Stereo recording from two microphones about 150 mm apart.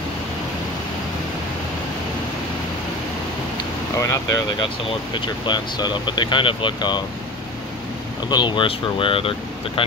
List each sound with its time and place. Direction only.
4.0 s speech: 25° left (ahead or behind)
8.3 s speech: 30° left (ahead or behind)